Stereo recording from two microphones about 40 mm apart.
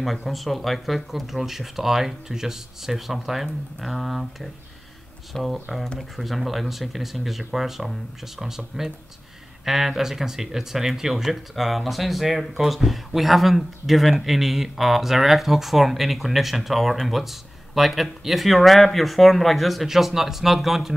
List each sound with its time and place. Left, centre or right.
0.0 s speech: centre